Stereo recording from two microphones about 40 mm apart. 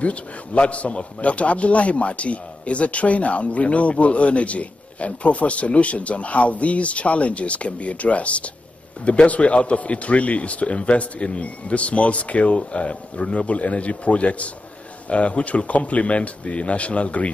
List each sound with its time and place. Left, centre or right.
0.0 s a man's voice: left